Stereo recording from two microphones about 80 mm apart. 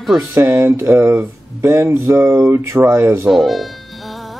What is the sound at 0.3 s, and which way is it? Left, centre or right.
Speech, right.